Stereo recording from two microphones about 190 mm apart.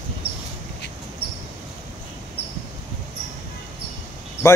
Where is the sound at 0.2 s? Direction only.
30° right (ahead or behind).